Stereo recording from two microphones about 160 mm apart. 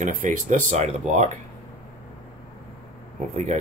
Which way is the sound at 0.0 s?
55° right (ahead or behind).